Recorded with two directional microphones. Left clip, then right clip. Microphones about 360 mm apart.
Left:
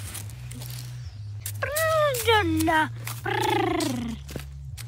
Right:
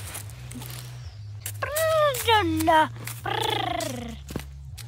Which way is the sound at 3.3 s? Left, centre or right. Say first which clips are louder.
Left 2 dB; centre.